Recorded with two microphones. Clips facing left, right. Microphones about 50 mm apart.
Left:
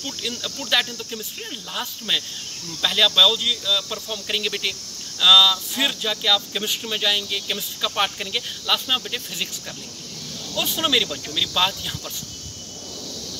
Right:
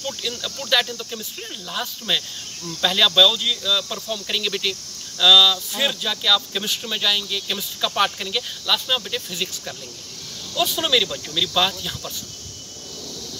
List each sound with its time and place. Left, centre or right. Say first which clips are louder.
0.0 s speech: right 1 dB; centre
10.5 s speech: right 2 dB; centre